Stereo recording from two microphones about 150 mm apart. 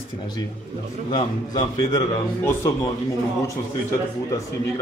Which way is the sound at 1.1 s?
30° left (ahead or behind).